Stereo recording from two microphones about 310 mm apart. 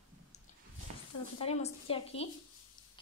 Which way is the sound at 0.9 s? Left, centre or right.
Right.